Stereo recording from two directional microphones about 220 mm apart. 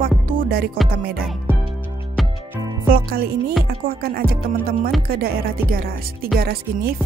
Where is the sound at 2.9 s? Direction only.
40° right (ahead or behind).